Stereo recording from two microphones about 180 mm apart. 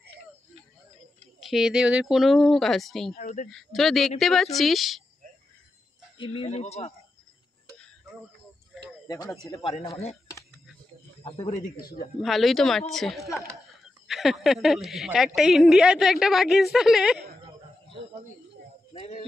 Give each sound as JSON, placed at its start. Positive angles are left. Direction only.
{"t": 1.4, "sound": "a woman's voice", "side_deg": 0}
{"t": 3.2, "sound": "speech", "side_deg": 45}
{"t": 3.4, "sound": "a woman's voice", "side_deg": 0}
{"t": 6.1, "sound": "speech", "side_deg": 30}
{"t": 9.0, "sound": "speech", "side_deg": 20}
{"t": 9.6, "sound": "speech", "side_deg": 30}
{"t": 11.8, "sound": "speech", "side_deg": 55}
{"t": 12.2, "sound": "a woman's voice", "side_deg": 0}
{"t": 18.9, "sound": "speech", "side_deg": 35}